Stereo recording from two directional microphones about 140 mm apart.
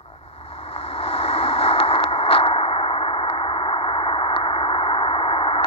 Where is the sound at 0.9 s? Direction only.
45° left (ahead or behind).